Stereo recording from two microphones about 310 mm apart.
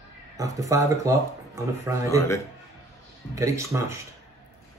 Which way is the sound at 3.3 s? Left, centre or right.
Centre.